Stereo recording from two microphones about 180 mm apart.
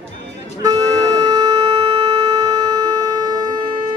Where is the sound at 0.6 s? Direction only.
20° right (ahead or behind).